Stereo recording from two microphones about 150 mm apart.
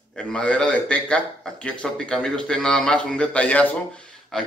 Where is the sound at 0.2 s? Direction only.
5° left (ahead or behind).